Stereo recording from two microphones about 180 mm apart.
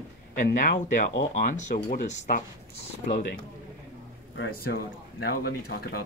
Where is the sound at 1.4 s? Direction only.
45° left (ahead or behind).